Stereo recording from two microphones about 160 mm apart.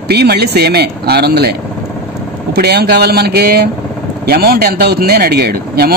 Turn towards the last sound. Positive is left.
turn(degrees=-75)  # may be behind; listen again after turning